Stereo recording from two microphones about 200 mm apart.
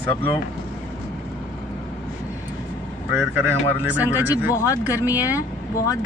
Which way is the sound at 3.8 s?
5° right (ahead or behind).